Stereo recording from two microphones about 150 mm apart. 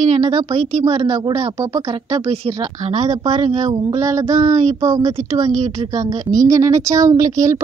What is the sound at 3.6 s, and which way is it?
A woman's voice, 20° right (ahead or behind).